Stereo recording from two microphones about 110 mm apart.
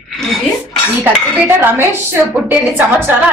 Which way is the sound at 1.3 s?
15° right (ahead or behind).